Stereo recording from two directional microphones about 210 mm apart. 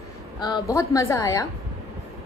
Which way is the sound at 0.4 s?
15° left (ahead or behind).